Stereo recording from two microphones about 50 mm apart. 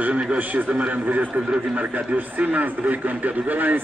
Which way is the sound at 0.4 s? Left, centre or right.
Right.